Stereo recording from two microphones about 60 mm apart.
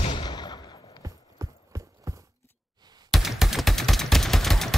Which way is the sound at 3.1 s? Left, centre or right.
Centre.